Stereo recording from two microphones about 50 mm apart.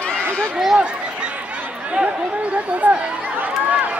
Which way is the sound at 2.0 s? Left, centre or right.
Right.